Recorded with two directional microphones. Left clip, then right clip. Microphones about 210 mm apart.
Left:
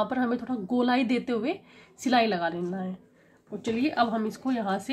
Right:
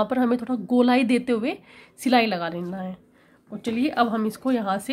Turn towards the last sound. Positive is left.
turn(degrees=-45)  # may be behind; listen again after turning